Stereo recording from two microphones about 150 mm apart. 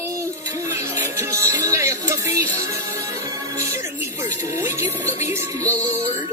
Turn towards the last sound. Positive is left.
turn(degrees=-20)  # may be behind; listen again after turning